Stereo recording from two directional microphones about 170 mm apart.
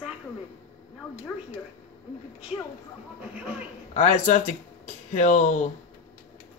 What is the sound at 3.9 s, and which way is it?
Speech, 40° left (ahead or behind).